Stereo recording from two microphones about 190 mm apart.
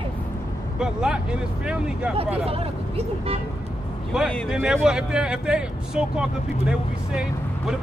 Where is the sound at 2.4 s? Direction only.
30° right (ahead or behind).